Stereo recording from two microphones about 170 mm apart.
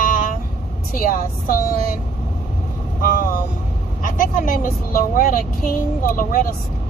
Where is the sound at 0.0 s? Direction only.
50° left (ahead or behind).